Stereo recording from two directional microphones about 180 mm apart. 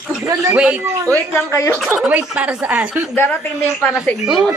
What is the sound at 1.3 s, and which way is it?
Speech, 15° left (ahead or behind).